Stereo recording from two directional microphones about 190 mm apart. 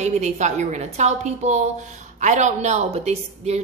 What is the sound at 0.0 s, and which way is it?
A woman's voice, 35° right (ahead or behind).